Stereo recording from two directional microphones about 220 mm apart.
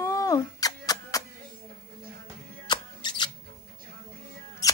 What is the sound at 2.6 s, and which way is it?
Music, 20° left (ahead or behind).